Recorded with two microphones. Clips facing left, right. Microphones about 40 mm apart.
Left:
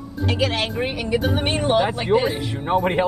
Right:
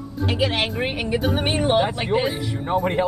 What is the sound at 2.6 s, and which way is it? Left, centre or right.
Speech, centre.